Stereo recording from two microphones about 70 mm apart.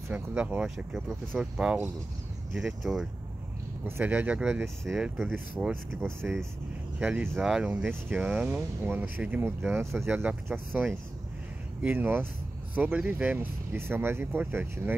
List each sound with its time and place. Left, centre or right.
0.1 s speech: centre
4.0 s speech: right
5.0 s speech: centre
7.0 s speech: centre
8.5 s speech: right
11.8 s speech: right
12.7 s speech: centre
13.7 s speech: right